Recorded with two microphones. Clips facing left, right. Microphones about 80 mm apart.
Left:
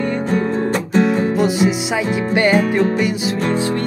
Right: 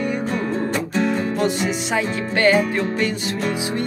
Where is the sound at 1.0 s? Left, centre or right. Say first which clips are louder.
Left 4 dB; centre.